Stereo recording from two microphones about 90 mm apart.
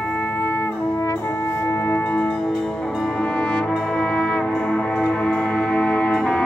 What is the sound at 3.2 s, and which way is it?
Brass instrument, 10° left (ahead or behind).